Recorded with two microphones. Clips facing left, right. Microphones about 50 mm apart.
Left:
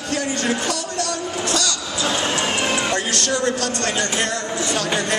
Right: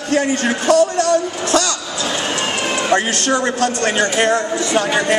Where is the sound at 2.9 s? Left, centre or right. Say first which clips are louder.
Right 6 dB; right.